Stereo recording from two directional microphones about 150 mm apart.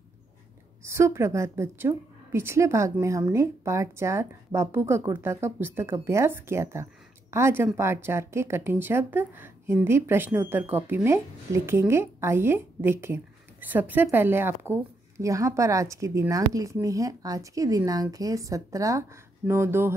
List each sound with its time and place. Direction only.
0.8 s a woman's voice: 20° right (ahead or behind)